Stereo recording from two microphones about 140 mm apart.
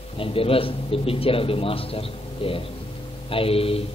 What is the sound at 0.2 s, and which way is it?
Speech, 40° left (ahead or behind).